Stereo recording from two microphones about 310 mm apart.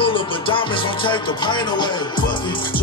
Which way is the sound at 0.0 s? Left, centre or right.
Centre.